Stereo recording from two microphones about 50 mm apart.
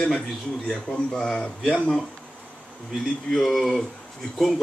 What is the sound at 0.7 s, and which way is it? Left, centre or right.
Speech, centre.